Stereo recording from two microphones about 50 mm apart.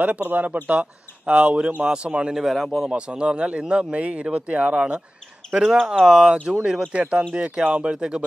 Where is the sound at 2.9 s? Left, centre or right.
Right.